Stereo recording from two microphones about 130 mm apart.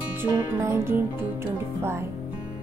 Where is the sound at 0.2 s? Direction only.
20° right (ahead or behind).